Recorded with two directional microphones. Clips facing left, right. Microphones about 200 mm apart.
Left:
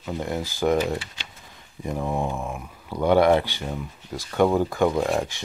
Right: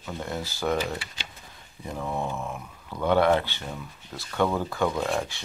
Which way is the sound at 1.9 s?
15° left (ahead or behind).